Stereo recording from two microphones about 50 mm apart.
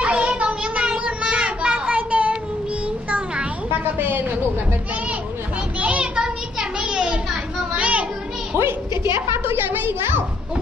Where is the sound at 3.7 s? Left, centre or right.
Right.